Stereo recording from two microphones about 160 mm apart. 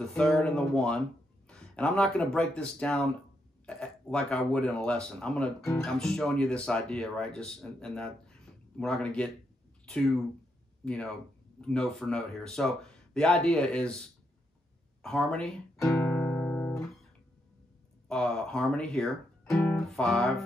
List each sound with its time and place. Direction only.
0.1 s speech: 5° left (ahead or behind)
15.8 s guitar: 15° left (ahead or behind)
18.0 s speech: 5° left (ahead or behind)